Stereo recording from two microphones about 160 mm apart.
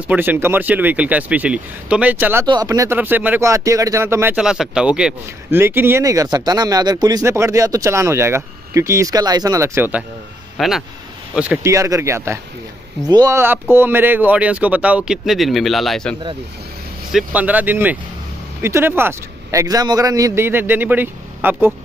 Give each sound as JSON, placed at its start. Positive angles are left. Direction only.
{"t": 0.1, "sound": "speech", "side_deg": -10}
{"t": 2.4, "sound": "speech", "side_deg": -25}
{"t": 4.4, "sound": "speech", "side_deg": -5}
{"t": 10.6, "sound": "speech", "side_deg": 0}
{"t": 11.7, "sound": "speech", "side_deg": -20}
{"t": 17.1, "sound": "speech", "side_deg": -10}